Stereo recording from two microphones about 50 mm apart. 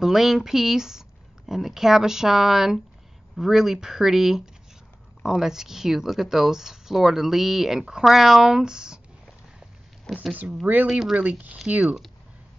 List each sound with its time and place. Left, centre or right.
0.0 s speech: centre
10.1 s speech: centre
10.9 s speech: centre
11.1 s speech: right